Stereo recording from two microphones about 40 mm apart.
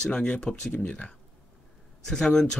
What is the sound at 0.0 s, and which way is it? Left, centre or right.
Speech, left.